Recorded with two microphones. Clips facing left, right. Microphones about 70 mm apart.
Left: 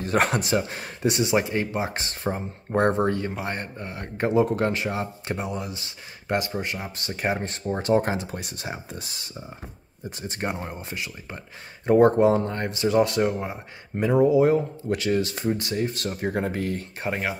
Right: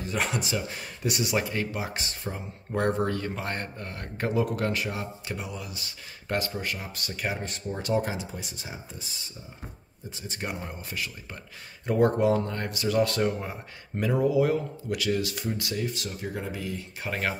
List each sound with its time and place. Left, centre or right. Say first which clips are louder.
0.0 s speech: left 7 dB; left
2.0 s speech: left 6 dB; left
6.2 s speech: left 4 dB; left
10.2 s speech: left 5 dB; left
17.1 s speech: left 1 dB; centre